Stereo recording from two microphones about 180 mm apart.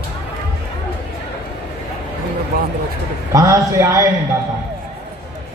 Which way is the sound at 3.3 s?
20° right (ahead or behind).